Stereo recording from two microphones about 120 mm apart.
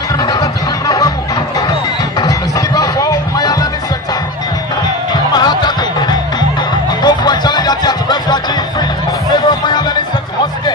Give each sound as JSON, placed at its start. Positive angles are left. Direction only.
{"t": 0.2, "sound": "music", "side_deg": 35}
{"t": 1.7, "sound": "a sound", "side_deg": 35}
{"t": 5.1, "sound": "music", "side_deg": 35}
{"t": 7.0, "sound": "music", "side_deg": 35}